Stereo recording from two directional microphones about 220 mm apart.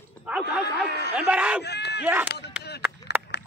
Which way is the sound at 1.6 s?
50° left (ahead or behind).